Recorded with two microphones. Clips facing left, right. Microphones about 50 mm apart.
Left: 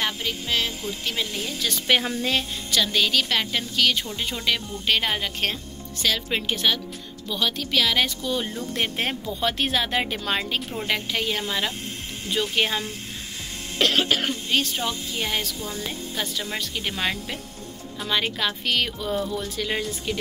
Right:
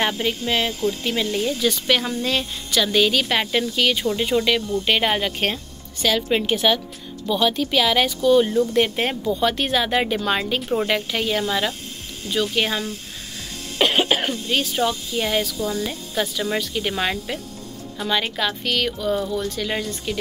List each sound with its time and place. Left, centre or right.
0.0 s a sound: right
0.5 s a woman's voice: centre
1.0 s speech: centre
1.9 s speech: centre
2.7 s a woman's voice: centre
13.7 s cough: centre
14.3 s speech: centre